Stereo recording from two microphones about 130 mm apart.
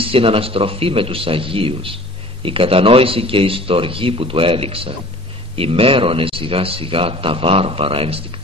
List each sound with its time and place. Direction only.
0.0 s speech: 45° right (ahead or behind)